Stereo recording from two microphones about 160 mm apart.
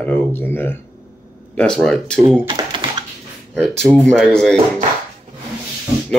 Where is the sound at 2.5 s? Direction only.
30° right (ahead or behind).